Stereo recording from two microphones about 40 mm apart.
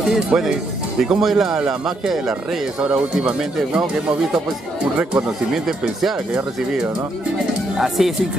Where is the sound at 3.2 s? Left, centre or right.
Right.